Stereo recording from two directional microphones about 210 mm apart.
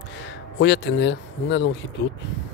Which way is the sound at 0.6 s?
60° left (ahead or behind).